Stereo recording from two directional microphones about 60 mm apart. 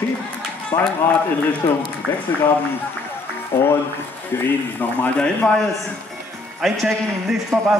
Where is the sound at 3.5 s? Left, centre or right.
Left.